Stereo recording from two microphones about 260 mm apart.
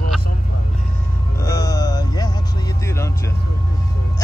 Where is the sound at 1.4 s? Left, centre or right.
Centre.